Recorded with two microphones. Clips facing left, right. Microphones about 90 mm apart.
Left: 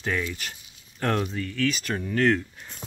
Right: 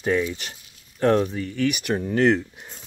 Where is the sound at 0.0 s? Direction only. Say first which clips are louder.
Right 6 dB; 20° right (ahead or behind).